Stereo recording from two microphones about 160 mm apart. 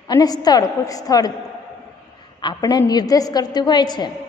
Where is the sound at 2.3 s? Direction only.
25° left (ahead or behind).